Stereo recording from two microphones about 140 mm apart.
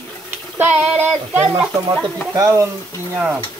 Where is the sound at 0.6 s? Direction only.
10° right (ahead or behind).